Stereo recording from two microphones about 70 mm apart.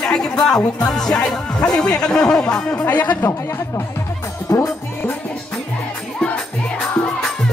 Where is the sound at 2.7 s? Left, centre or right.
Left.